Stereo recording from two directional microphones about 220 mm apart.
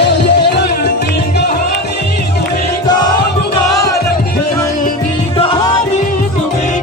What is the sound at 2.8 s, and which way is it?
Music, 20° left (ahead or behind).